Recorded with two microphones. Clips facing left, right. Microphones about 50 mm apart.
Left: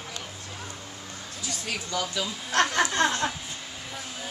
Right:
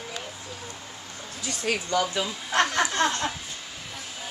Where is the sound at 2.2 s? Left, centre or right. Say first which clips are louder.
Right 1 dB; centre.